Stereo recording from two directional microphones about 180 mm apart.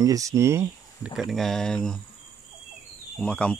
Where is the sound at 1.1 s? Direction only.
Centre (ahead or behind).